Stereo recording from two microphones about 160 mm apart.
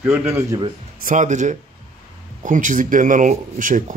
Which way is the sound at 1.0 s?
50° right (ahead or behind).